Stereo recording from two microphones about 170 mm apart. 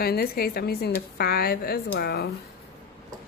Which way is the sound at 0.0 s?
65° left (ahead or behind).